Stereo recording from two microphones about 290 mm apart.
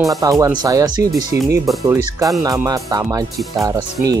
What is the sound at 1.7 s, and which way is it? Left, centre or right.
Speech, centre.